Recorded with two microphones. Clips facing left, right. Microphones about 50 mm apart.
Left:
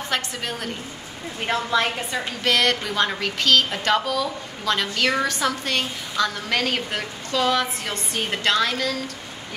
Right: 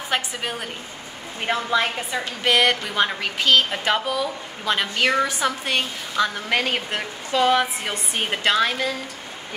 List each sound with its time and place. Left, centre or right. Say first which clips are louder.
0.1 s a woman's voice: right 2 dB; centre